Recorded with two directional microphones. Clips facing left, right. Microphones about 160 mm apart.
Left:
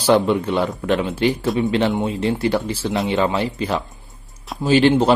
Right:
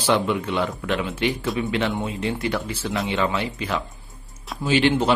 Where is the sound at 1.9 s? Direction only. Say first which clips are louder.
Left 5 dB; 20° left (ahead or behind).